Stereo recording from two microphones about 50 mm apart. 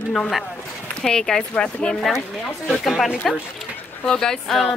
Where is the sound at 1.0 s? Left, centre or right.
Centre.